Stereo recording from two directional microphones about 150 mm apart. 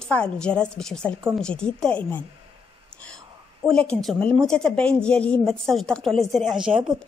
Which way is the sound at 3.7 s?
5° left (ahead or behind).